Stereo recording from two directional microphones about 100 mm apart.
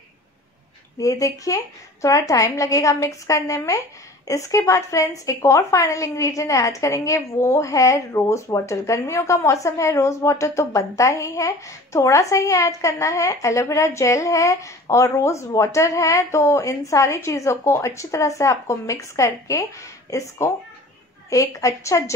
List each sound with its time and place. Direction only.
0.9 s a woman's voice: 35° left (ahead or behind)